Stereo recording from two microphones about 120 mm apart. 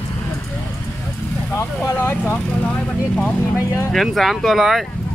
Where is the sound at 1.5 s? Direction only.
20° left (ahead or behind).